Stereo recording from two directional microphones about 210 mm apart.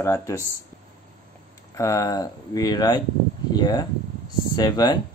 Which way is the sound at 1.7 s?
15° left (ahead or behind).